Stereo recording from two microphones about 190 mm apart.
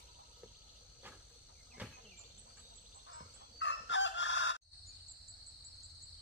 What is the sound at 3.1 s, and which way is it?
Chicken, 80° left.